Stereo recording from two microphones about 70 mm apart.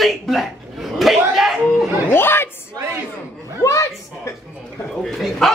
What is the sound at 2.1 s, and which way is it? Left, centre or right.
Speech, left.